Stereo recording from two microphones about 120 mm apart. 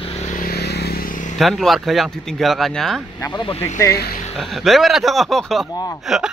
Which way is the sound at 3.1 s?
35° left (ahead or behind).